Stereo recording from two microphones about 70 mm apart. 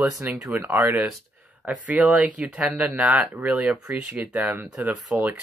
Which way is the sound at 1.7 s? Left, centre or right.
Centre.